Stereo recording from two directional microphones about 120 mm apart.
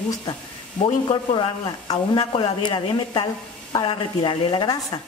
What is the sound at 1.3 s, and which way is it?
A woman's voice, 45° left (ahead or behind).